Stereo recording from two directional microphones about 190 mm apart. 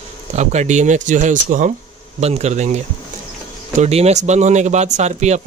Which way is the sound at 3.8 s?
35° right (ahead or behind).